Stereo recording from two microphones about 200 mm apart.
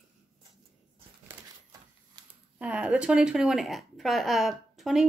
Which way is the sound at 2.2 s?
20° right (ahead or behind).